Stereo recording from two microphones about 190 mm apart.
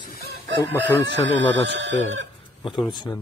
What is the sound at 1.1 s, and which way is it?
Speech, 70° right (ahead or behind).